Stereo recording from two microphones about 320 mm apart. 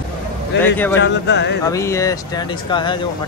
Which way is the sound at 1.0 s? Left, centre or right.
Left.